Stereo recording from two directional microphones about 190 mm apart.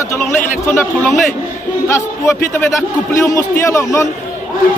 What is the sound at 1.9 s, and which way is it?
Speech, 15° left (ahead or behind).